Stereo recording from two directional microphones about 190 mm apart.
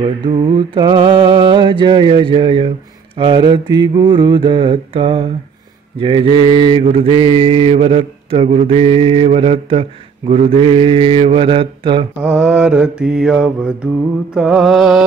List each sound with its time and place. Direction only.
0.0 s mantra: 25° right (ahead or behind)
12.2 s mantra: 5° right (ahead or behind)